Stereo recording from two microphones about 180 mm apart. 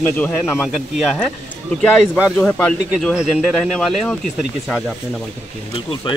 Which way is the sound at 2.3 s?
5° left (ahead or behind).